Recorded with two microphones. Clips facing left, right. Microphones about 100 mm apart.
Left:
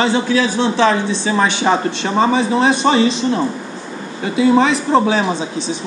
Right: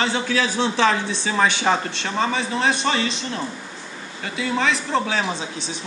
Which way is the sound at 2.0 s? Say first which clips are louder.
Left 8 dB; 20° left (ahead or behind).